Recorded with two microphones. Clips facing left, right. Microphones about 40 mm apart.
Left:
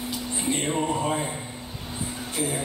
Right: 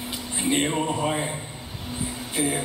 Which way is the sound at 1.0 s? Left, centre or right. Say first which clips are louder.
Right 1 dB; right.